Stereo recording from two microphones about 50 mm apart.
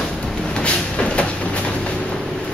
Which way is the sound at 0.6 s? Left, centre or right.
Left.